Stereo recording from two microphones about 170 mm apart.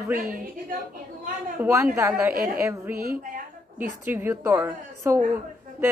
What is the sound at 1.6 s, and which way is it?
A woman's voice, 15° right (ahead or behind).